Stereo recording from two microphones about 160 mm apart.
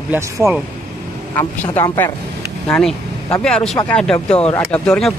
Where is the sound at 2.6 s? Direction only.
5° left (ahead or behind).